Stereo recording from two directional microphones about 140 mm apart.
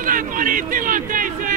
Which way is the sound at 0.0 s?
75° right (ahead or behind).